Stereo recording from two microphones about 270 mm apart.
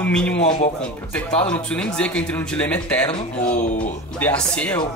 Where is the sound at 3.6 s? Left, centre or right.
Left.